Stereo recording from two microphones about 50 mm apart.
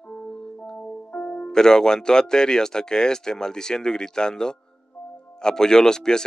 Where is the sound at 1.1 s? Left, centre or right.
Left.